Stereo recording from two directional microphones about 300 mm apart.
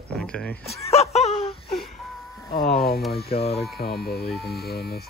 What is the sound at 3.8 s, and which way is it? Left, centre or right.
Speech, left.